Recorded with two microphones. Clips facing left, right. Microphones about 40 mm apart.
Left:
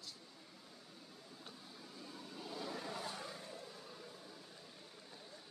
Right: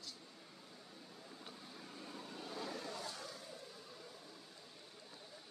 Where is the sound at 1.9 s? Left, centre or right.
Right.